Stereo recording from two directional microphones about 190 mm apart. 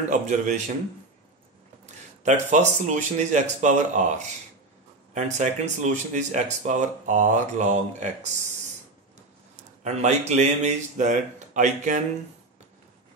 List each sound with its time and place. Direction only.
0.1 s speech: 40° right (ahead or behind)
1.9 s speech: 40° right (ahead or behind)
5.1 s speech: 40° right (ahead or behind)
9.8 s speech: 35° right (ahead or behind)